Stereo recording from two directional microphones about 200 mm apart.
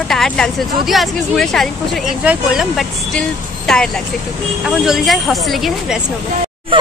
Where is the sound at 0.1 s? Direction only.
Centre (ahead or behind).